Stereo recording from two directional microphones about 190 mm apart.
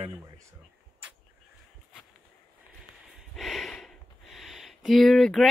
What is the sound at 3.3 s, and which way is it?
Speech, centre (ahead or behind).